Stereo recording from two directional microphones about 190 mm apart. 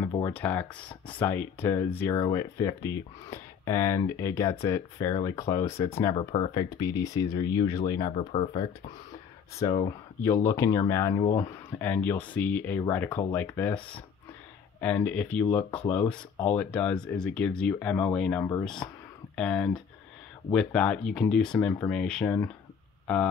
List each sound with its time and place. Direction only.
0.3 s speech: 10° left (ahead or behind)
6.1 s speech: 30° left (ahead or behind)
8.2 s speech: 30° left (ahead or behind)
9.6 s speech: 20° left (ahead or behind); by 22.3 s 5° left (ahead or behind)